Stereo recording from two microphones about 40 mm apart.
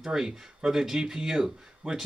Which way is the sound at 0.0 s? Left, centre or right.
Centre.